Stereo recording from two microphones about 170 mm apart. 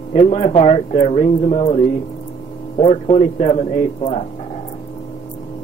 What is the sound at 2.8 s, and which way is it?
Speech, 40° left (ahead or behind).